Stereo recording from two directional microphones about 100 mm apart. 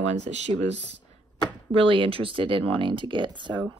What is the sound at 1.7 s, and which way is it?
Speech, 65° right (ahead or behind).